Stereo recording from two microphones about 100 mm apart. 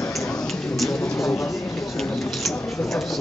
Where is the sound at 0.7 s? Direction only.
Centre (ahead or behind).